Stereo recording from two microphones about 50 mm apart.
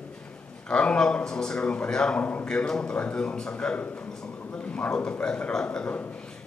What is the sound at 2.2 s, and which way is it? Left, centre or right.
Speech, left.